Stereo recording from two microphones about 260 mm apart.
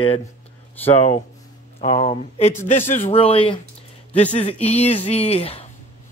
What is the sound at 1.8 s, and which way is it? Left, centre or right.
A man's voice, left.